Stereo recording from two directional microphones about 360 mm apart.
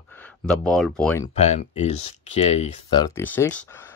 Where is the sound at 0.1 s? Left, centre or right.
Centre.